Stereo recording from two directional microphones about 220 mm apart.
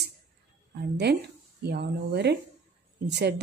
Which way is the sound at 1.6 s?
50° right (ahead or behind).